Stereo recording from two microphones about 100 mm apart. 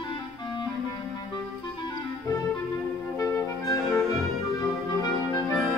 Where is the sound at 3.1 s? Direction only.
30° left (ahead or behind).